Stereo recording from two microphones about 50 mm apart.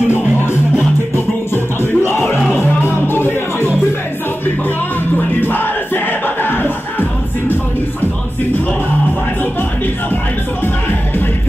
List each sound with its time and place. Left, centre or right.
1.1 s music: left
2.2 s music: centre
2.8 s music: left
5.1 s battle cry: left